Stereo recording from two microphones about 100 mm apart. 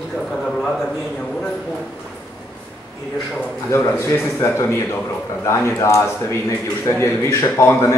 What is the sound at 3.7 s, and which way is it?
Speech, 25° left (ahead or behind).